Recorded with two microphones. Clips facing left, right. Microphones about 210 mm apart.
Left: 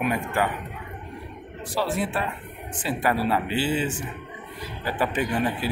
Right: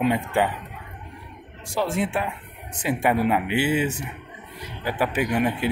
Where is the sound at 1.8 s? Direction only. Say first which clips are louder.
Right 2 dB; 20° right (ahead or behind).